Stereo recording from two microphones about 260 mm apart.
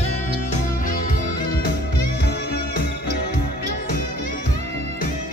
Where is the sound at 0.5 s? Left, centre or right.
Left.